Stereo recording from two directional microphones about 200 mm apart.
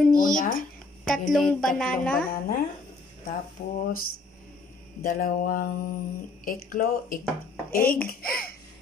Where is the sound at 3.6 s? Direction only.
35° left (ahead or behind).